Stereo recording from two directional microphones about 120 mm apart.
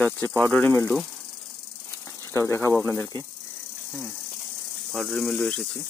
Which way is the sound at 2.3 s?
25° left (ahead or behind).